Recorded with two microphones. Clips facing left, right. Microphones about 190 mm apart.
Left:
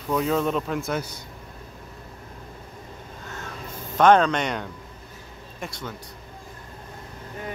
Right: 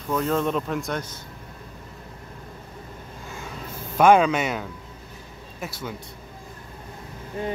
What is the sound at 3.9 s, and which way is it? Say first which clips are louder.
Speech: right 1 dB; 10° right (ahead or behind).